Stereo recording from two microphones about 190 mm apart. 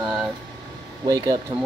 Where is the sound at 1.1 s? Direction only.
20° right (ahead or behind).